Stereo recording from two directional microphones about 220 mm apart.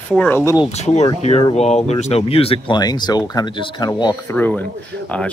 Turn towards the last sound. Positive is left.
turn(degrees=5)  # may be behind; listen again after turning